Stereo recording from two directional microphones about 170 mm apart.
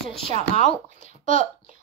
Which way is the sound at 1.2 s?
40° left (ahead or behind).